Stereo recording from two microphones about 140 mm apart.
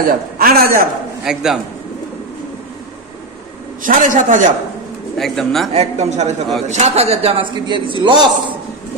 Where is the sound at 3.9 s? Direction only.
65° right (ahead or behind).